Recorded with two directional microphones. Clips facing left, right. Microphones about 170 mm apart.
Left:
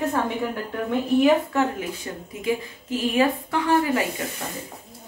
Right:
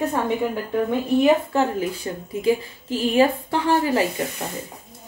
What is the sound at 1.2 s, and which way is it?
A woman's voice, 30° right (ahead or behind).